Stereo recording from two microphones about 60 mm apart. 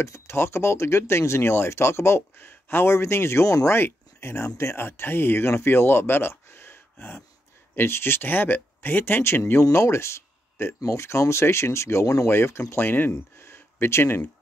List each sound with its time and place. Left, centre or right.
0.0 s speech: left
9.5 s speech: left